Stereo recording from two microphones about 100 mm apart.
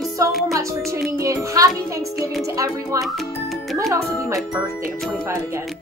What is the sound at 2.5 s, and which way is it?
Speech, 35° right (ahead or behind).